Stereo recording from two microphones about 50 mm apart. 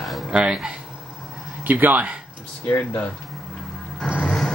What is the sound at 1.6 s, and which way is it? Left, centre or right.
Speech, right.